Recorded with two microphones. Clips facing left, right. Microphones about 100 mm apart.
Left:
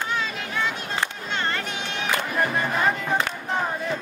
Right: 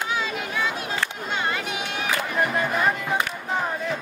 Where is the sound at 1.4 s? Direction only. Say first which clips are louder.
Even; 10° right (ahead or behind).